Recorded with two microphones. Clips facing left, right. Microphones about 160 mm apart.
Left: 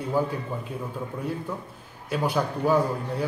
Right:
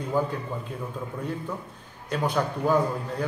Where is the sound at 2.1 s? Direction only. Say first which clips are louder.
Left 1 dB; 10° left (ahead or behind).